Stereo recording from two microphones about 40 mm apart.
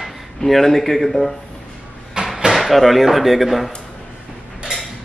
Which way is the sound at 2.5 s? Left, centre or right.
Centre.